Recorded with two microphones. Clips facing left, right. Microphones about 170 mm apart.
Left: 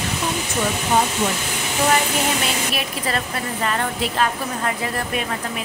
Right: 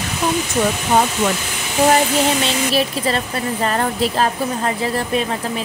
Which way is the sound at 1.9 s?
30° right (ahead or behind).